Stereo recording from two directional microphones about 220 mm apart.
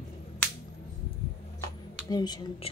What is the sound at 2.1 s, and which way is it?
Speech, 15° left (ahead or behind).